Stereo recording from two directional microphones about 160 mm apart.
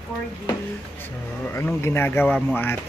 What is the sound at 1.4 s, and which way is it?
Speech, 15° left (ahead or behind).